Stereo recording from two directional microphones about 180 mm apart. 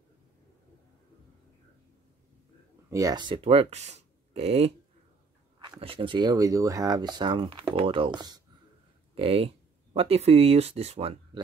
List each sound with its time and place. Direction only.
2.9 s speech: 20° right (ahead or behind)